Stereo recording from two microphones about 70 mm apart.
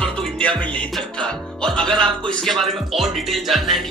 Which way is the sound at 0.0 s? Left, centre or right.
Centre.